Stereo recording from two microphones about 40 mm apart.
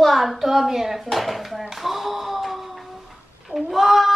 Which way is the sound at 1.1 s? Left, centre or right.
Centre.